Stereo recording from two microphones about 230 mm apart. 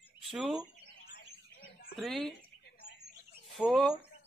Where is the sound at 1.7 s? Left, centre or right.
Left.